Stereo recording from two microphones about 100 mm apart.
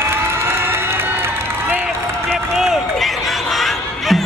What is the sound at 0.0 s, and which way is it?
Crowd, 25° right (ahead or behind).